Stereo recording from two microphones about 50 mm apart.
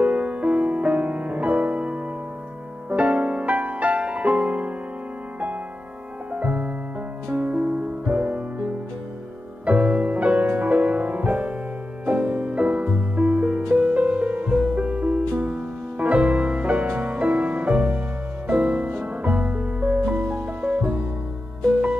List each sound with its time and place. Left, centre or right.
0.0 s music: right
6.3 s music: right
9.7 s music: right